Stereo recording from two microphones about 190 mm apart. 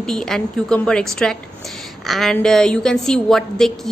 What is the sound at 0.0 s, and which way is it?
A woman's voice, centre (ahead or behind).